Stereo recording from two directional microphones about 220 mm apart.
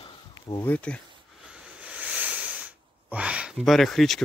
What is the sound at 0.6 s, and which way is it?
Speech, 5° left (ahead or behind).